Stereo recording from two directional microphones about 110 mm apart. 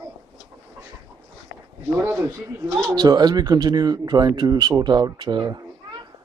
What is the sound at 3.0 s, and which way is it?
Speech, 40° right (ahead or behind).